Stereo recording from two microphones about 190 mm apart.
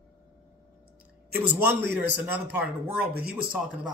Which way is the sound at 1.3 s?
10° right (ahead or behind).